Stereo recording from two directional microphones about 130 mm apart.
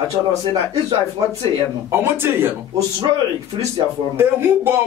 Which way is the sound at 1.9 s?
20° right (ahead or behind).